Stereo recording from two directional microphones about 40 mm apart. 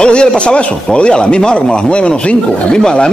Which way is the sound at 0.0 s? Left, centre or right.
Left.